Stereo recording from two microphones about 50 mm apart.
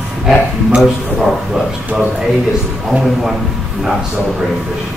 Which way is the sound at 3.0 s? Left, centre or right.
Centre.